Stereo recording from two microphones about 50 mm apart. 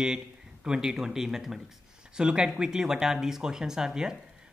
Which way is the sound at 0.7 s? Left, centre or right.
Centre.